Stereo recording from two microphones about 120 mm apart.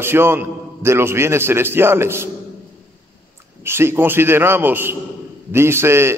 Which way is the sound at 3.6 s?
20° right (ahead or behind).